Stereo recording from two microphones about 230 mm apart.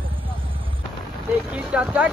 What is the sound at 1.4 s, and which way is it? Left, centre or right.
Speech, centre.